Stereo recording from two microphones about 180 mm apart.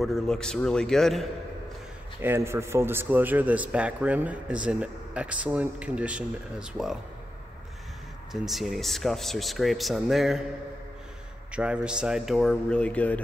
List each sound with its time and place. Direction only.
0.0 s speech: centre (ahead or behind)
2.2 s a man's voice: 15° right (ahead or behind)
8.3 s speech: centre (ahead or behind)
11.5 s speech: 5° right (ahead or behind)